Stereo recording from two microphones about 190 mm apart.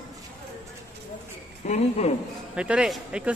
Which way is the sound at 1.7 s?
35° left (ahead or behind).